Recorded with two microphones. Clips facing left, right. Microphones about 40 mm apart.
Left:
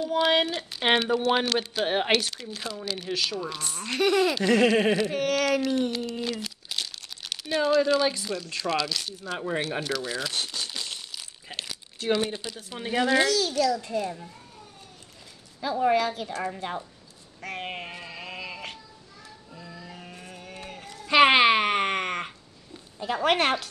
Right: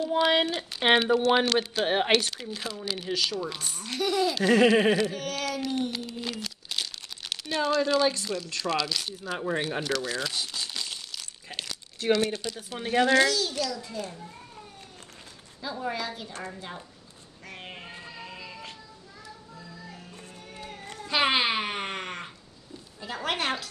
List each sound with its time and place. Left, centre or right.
0.1 s speech: centre
3.8 s a child's voice: left
4.5 s speech: centre
5.1 s speech: left
5.8 s speech: centre
11.0 s crumpling: centre
12.1 s speech: centre
12.6 s speech: centre
13.3 s a child's voice: left
15.8 s a child's voice: left
17.4 s a sound: left
20.0 s music: left
21.1 s a sound: left
23.2 s a child's voice: left